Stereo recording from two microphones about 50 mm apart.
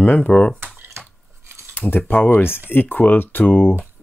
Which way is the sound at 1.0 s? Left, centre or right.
Right.